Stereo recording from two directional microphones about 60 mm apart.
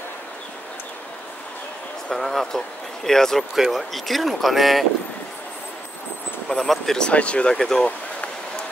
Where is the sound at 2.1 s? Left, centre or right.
Centre.